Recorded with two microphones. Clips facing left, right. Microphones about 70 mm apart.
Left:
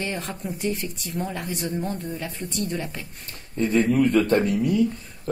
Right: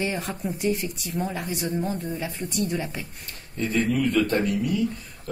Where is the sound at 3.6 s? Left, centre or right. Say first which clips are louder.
Left 4 dB; left.